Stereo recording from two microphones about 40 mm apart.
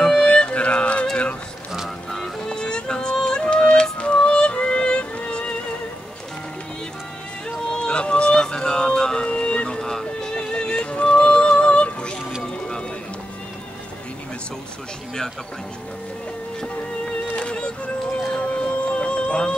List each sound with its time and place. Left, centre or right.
0.0 s music: left
2.0 s music: centre
2.5 s music: centre
7.7 s music: left
10.3 s music: left
16.6 s music: left